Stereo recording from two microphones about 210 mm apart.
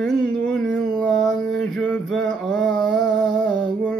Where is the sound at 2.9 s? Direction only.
60° right (ahead or behind).